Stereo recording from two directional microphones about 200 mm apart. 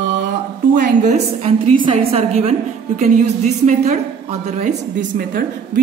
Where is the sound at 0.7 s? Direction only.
40° right (ahead or behind).